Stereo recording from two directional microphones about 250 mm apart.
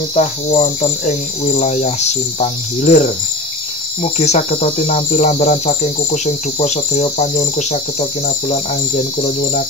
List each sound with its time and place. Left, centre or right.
0.1 s cricket: left
8.5 s speech: left